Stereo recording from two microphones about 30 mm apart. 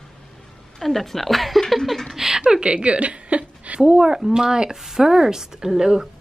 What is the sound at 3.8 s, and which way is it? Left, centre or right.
A woman's voice, centre.